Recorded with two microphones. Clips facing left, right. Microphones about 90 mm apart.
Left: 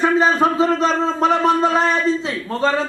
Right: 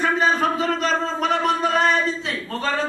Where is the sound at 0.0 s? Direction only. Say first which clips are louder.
Left 4 dB; 25° left (ahead or behind).